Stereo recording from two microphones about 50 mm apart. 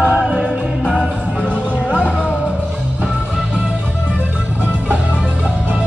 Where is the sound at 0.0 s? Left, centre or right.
Right.